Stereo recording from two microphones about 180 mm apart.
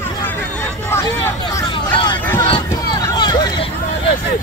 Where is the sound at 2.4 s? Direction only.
30° left (ahead or behind).